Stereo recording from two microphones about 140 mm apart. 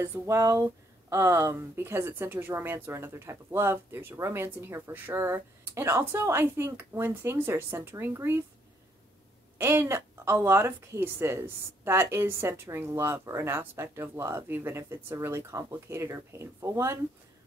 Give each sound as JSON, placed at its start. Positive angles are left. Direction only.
{"t": 0.0, "sound": "a woman's voice", "side_deg": -20}
{"t": 9.6, "sound": "a woman's voice", "side_deg": -15}